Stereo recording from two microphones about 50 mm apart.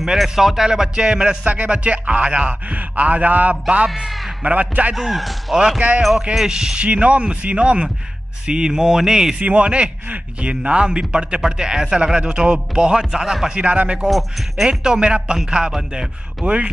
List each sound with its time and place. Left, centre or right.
0.0 s speech: centre; by 3.5 s right
3.6 s speech: right
4.9 s speech: centre
5.8 s speech: right
6.3 s speech: centre
6.9 s speech: right
9.4 s speech: right; by 13.5 s centre
13.6 s speech: right
14.0 s speech: centre; by 16.6 s right